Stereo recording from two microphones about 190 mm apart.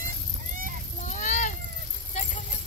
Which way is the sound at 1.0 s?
40° left (ahead or behind).